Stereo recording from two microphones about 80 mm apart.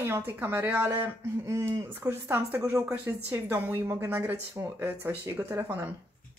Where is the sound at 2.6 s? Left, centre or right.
Right.